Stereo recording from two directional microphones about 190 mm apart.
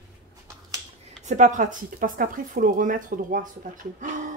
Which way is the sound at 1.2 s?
40° right (ahead or behind).